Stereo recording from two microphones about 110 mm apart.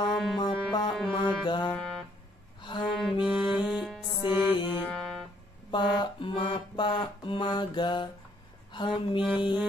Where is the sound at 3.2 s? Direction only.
10° right (ahead or behind).